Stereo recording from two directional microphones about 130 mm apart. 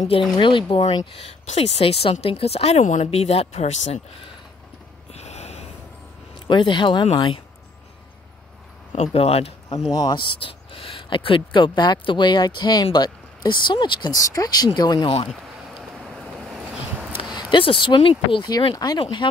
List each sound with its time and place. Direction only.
0.4 s speech: 40° left (ahead or behind)
1.4 s speech: 55° left (ahead or behind)
2.8 s speech: 70° left (ahead or behind)
3.1 s speech: 50° left (ahead or behind)
5.1 s snort: 55° left (ahead or behind)
6.4 s speech: 35° left (ahead or behind)
8.9 s speech: 55° left (ahead or behind)
9.9 s speech: 35° left (ahead or behind)
15.2 s a sound: centre (ahead or behind)
17.4 s speech: 40° left (ahead or behind)